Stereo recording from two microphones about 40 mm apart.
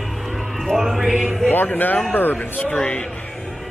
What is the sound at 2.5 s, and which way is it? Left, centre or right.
Speech, left.